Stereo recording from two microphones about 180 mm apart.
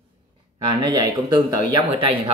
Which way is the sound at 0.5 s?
25° right (ahead or behind).